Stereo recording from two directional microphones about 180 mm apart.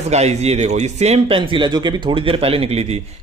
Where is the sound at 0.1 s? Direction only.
35° right (ahead or behind).